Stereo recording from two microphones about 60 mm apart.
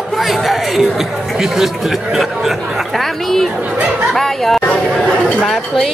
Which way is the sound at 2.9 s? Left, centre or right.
Centre.